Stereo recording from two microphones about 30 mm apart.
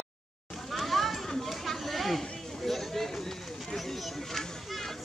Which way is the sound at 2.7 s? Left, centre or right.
Centre.